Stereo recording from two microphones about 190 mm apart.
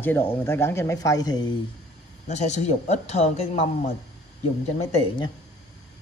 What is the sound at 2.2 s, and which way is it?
Speech, 35° left (ahead or behind).